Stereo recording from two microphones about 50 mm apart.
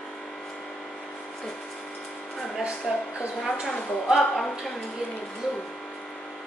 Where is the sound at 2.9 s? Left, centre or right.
Centre.